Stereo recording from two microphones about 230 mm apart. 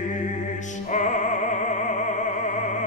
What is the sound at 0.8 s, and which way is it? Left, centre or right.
Music, left.